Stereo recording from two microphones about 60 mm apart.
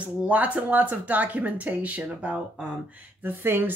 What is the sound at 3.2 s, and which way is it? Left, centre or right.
Speech, right.